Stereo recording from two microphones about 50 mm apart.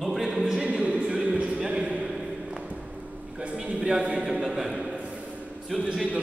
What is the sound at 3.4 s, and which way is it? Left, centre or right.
A man's voice, right.